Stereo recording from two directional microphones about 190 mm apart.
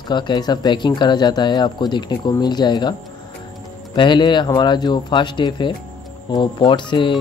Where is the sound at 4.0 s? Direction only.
25° left (ahead or behind).